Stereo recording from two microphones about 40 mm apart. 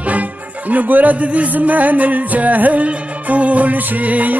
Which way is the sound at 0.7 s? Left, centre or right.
Right.